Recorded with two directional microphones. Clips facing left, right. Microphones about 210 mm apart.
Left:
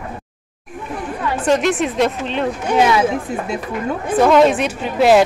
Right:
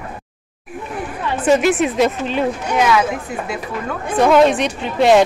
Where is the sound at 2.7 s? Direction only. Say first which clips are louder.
Left 2 dB; 30° left (ahead or behind).